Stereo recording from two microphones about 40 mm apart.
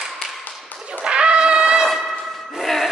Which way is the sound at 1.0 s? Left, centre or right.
Right.